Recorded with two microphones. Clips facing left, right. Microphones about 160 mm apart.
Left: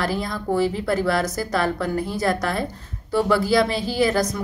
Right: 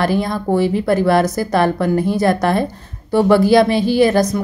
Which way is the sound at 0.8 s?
60° right (ahead or behind).